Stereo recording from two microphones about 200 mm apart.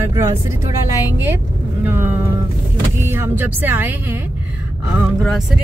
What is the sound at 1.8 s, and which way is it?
Speech, 10° right (ahead or behind).